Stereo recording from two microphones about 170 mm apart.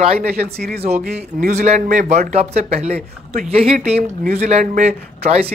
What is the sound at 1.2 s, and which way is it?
Speech, 45° right (ahead or behind).